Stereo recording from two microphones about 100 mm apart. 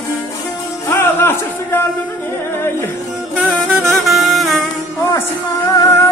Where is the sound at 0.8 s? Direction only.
25° left (ahead or behind).